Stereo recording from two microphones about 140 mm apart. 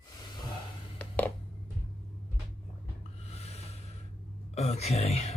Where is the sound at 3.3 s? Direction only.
50° left (ahead or behind).